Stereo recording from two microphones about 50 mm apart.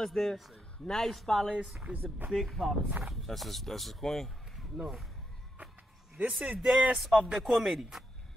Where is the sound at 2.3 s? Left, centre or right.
Centre.